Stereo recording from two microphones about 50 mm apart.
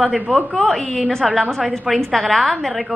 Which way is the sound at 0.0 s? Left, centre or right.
Centre.